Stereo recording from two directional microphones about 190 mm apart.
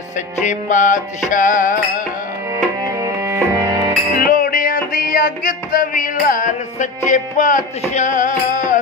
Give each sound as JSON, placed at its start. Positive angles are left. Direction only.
{"t": 0.4, "sound": "music", "side_deg": 40}
{"t": 2.5, "sound": "music", "side_deg": -15}
{"t": 4.2, "sound": "music", "side_deg": 45}